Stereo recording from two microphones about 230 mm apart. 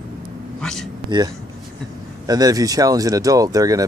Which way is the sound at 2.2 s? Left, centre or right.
Centre.